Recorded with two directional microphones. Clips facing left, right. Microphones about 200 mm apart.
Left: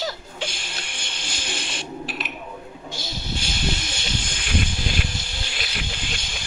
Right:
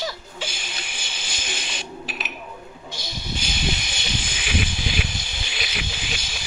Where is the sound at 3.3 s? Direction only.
5° right (ahead or behind).